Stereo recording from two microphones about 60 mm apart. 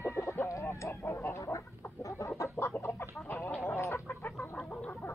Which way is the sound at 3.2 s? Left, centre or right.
Left.